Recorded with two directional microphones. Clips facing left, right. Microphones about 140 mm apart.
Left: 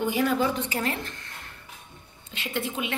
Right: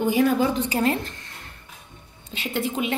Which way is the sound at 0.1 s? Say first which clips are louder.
Right 6 dB; 25° right (ahead or behind).